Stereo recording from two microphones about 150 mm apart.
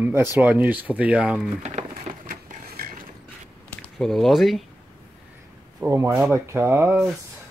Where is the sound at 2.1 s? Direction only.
65° right (ahead or behind).